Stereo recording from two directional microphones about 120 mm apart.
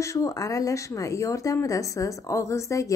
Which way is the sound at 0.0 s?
25° left (ahead or behind).